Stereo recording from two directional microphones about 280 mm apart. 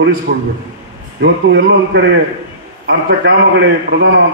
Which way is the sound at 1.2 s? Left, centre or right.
Right.